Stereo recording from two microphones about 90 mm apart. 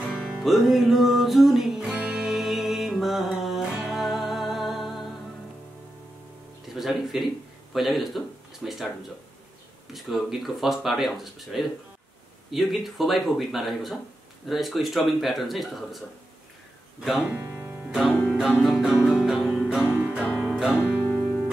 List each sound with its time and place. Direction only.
0.0 s music: 5° right (ahead or behind)
6.7 s a sound: 5° right (ahead or behind)
7.7 s speech: centre (ahead or behind)
9.9 s speech: centre (ahead or behind)
17.0 s speech: centre (ahead or behind)
18.6 s speech: 5° right (ahead or behind)
19.0 s music: 5° right (ahead or behind)
20.7 s music: 20° left (ahead or behind)